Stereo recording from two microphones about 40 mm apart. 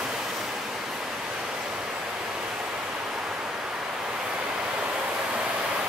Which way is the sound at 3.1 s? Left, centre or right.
Centre.